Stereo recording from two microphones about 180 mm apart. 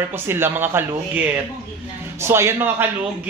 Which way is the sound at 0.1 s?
15° right (ahead or behind).